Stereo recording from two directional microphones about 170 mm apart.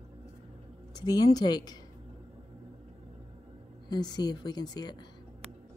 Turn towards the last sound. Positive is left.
turn(degrees=25)  # may be behind; listen again after turning